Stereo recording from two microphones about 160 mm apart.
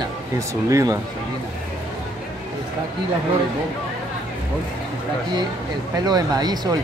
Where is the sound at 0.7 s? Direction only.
20° right (ahead or behind).